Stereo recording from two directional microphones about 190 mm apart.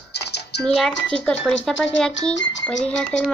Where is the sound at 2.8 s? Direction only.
5° left (ahead or behind).